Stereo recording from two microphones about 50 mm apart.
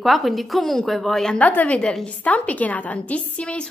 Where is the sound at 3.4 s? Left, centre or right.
Centre.